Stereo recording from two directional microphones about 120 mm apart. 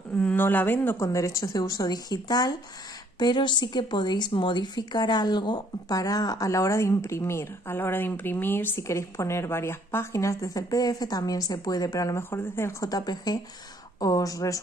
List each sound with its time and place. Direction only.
0.1 s a woman's voice: 10° left (ahead or behind); by 14.6 s 30° left (ahead or behind)